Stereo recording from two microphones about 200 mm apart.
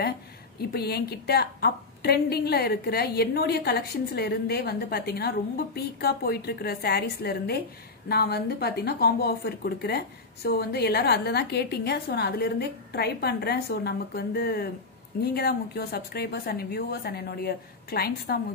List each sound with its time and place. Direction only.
0.6 s a woman's voice: 55° left (ahead or behind)